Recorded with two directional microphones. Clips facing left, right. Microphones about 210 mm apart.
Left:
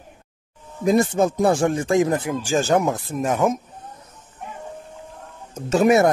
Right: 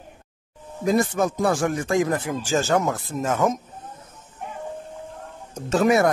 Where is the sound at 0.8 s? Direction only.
25° left (ahead or behind).